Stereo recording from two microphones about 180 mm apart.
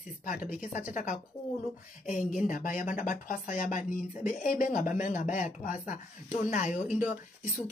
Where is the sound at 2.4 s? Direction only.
45° left (ahead or behind).